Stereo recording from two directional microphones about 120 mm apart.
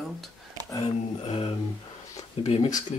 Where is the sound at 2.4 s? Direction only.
55° left (ahead or behind).